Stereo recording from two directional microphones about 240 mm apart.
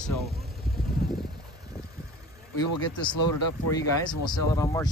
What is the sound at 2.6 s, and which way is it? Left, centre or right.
Speech, centre.